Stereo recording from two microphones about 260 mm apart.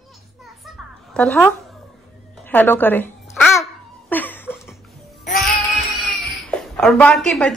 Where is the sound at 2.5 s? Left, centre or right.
Centre.